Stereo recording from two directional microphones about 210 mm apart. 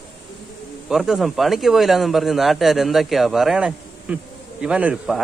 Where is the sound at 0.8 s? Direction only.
Centre (ahead or behind).